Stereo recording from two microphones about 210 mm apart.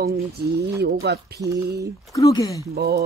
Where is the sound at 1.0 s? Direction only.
55° right (ahead or behind).